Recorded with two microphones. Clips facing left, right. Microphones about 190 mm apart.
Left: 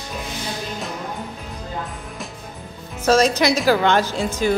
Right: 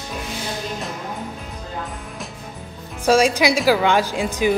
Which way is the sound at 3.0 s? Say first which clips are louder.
Even; 10° right (ahead or behind).